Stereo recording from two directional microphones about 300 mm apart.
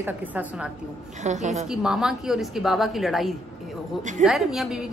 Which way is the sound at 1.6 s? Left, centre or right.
Centre.